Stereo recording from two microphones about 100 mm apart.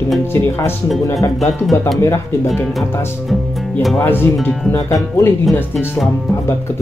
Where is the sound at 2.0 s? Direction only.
25° left (ahead or behind).